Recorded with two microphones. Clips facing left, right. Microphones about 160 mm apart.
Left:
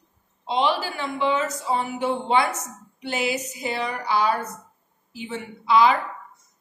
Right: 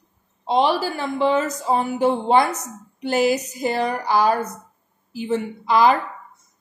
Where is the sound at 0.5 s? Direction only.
40° right (ahead or behind).